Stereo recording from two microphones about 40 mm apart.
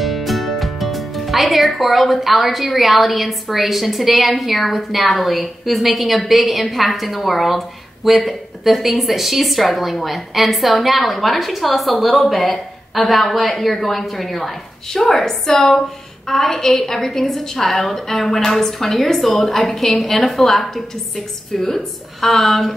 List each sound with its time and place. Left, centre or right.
0.0 s a woman's voice: centre